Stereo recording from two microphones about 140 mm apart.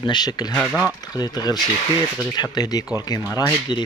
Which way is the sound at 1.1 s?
30° left (ahead or behind).